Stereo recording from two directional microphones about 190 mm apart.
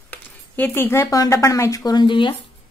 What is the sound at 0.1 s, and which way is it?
Speech, 10° left (ahead or behind).